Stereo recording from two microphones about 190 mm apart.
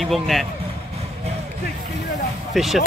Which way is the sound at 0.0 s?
Centre (ahead or behind).